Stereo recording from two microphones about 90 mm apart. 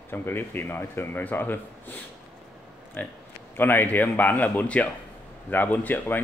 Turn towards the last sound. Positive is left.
turn(degrees=20)  # may be behind; listen again after turning